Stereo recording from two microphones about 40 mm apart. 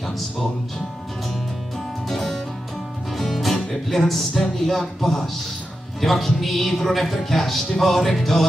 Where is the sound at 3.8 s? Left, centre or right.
Centre.